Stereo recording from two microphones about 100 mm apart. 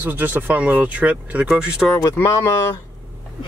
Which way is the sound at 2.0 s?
30° left (ahead or behind).